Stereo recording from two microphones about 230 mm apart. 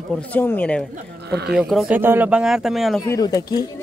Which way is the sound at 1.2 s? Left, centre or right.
Right.